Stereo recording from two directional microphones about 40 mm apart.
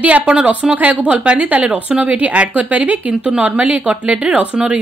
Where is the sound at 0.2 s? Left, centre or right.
Right.